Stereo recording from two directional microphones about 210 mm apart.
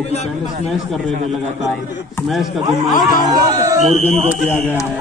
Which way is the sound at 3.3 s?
15° right (ahead or behind).